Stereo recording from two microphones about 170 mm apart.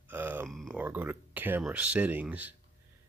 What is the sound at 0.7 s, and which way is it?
Speech, 10° right (ahead or behind).